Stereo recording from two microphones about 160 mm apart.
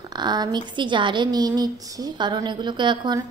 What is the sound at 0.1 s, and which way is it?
A woman's voice, 25° right (ahead or behind).